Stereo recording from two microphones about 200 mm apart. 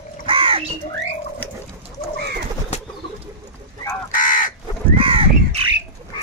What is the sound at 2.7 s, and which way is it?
Bird, 30° left (ahead or behind).